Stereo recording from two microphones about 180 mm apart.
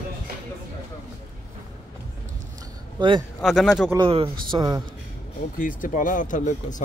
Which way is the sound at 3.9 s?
30° right (ahead or behind).